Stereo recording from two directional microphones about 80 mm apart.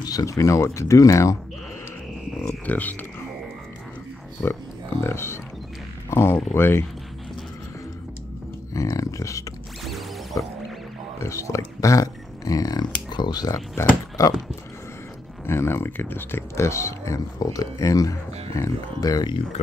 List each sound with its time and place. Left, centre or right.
0.0 s speech: left
2.6 s speech: left
4.4 s speech: left
8.7 s speech: left
9.8 s music: centre
11.1 s speech: left
13.8 s speech: left
15.4 s speech: left